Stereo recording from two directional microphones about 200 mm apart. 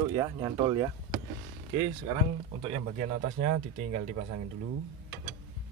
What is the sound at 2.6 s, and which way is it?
Speech, 35° right (ahead or behind).